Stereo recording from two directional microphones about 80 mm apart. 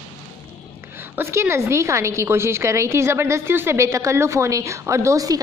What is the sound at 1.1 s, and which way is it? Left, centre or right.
A woman's voice, right.